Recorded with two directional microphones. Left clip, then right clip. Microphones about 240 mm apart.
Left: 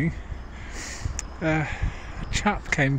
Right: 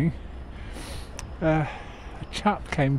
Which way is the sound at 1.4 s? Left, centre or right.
Centre.